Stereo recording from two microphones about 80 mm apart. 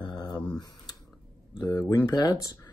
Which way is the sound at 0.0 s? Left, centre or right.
Left.